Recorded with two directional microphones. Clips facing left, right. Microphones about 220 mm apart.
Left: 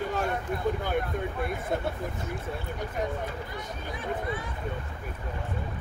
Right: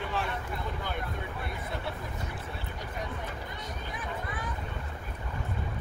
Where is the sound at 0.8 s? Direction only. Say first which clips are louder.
Left 7 dB; 50° left (ahead or behind).